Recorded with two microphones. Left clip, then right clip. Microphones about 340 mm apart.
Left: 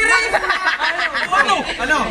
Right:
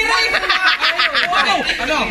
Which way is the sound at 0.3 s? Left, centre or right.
Left.